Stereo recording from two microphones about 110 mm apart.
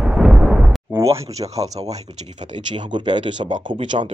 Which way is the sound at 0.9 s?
25° right (ahead or behind).